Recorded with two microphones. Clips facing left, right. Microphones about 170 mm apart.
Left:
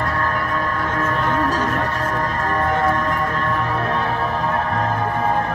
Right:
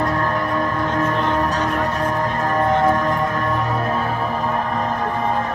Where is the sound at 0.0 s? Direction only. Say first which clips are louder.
Right 2 dB; 20° right (ahead or behind); by 5.4 s centre (ahead or behind).